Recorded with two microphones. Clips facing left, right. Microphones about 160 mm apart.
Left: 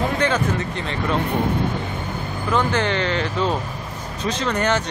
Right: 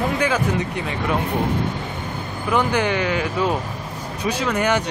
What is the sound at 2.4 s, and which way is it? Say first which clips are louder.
Speech: right 1 dB; 10° right (ahead or behind).